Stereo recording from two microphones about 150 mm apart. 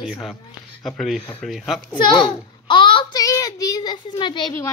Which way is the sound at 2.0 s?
30° left (ahead or behind).